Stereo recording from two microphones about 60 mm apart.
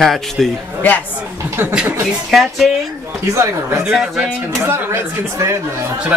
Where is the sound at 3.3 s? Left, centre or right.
Right.